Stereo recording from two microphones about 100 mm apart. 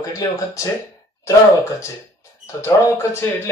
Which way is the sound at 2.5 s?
30° left (ahead or behind).